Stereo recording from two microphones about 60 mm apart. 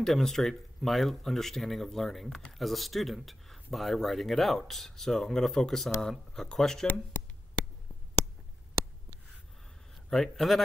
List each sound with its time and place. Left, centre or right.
0.0 s speech: centre
6.9 s speech: left
10.0 s speech: centre